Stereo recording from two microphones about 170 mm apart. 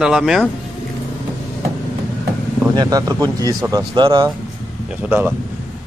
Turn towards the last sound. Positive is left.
turn(degrees=-10)  # may be behind; listen again after turning